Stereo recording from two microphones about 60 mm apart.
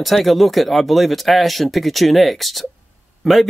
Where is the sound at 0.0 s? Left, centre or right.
Centre.